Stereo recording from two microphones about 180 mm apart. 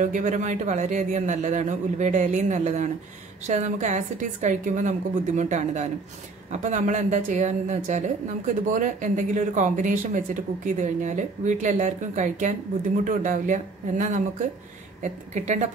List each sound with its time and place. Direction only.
0.0 s a man's voice: 45° right (ahead or behind)